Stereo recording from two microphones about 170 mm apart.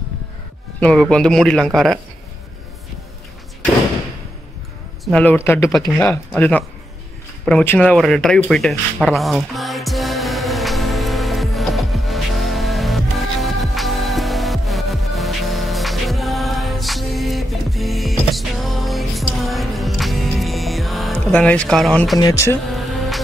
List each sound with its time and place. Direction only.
0.7 s speech: 5° left (ahead or behind)
5.0 s speech: 5° left (ahead or behind)
7.4 s a sound: 10° left (ahead or behind)
21.3 s speech: 10° left (ahead or behind)
22.2 s speech: 20° left (ahead or behind)
22.8 s music: centre (ahead or behind)